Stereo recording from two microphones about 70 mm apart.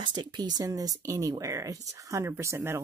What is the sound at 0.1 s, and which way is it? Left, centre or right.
Speech, right.